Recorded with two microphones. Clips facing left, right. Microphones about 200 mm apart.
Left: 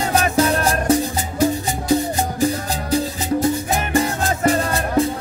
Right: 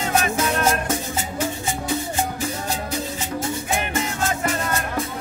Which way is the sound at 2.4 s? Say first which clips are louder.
Left 6 dB; 35° left (ahead or behind).